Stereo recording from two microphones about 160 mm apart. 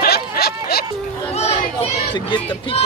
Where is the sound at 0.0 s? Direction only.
75° left (ahead or behind).